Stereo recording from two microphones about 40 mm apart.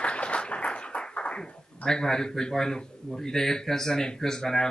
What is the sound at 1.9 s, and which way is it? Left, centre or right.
Speech, centre.